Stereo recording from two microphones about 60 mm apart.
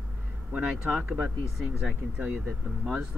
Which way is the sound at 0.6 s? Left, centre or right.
Centre.